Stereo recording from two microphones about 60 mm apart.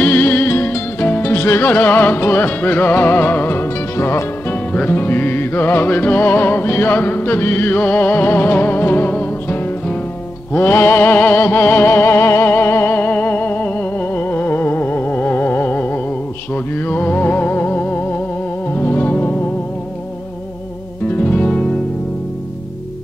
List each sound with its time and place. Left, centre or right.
0.0 s music: left
21.1 s music: left